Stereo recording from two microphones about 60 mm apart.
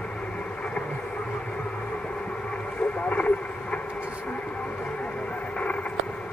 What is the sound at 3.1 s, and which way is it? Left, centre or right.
Radio, left.